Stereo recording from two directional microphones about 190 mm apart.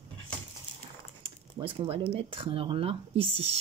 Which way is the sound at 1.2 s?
30° right (ahead or behind).